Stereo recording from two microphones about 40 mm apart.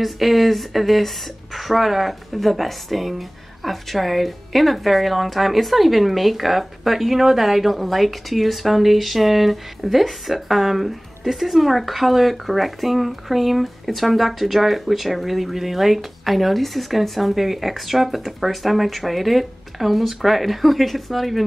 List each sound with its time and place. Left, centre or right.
0.0 s speech: centre